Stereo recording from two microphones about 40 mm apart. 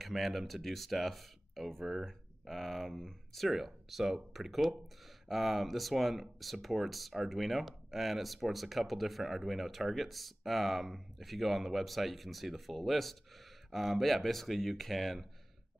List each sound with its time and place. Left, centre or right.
0.0 s speech: centre